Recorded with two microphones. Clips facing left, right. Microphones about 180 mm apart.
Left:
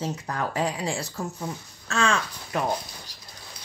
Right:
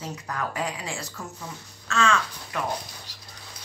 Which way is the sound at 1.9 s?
30° left (ahead or behind).